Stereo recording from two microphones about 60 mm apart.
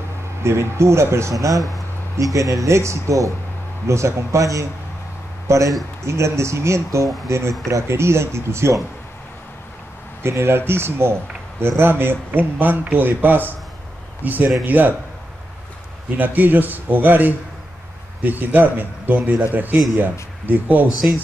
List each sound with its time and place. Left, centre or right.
0.4 s speech: right
1.3 s speech: right
6.0 s speech: right
10.2 s speech: right
16.2 s speech: right